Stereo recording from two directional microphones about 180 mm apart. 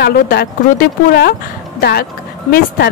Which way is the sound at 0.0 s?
60° left (ahead or behind).